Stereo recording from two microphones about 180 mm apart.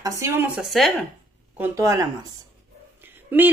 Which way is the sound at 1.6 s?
15° right (ahead or behind).